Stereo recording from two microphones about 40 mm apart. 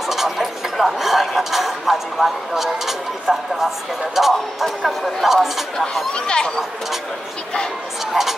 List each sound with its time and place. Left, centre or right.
0.0 s speech: centre
6.1 s speech: left
8.1 s speech: centre